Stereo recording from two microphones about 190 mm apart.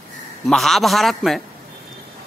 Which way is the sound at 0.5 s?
Centre (ahead or behind).